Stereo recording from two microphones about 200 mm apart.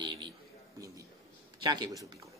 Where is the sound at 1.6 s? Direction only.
20° right (ahead or behind).